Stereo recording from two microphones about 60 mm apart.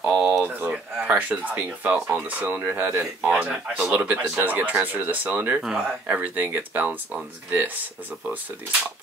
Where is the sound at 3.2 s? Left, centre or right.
Right.